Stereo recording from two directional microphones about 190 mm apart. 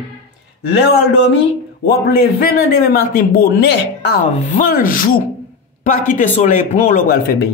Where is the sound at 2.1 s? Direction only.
50° left (ahead or behind).